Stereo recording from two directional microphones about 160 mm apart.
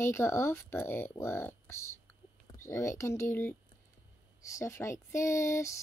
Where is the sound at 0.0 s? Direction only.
15° left (ahead or behind).